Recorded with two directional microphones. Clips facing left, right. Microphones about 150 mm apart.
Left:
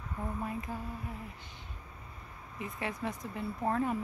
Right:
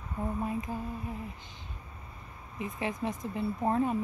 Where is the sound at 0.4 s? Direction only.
20° right (ahead or behind).